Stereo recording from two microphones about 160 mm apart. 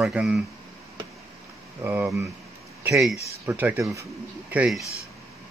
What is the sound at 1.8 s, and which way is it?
Speech, 15° right (ahead or behind).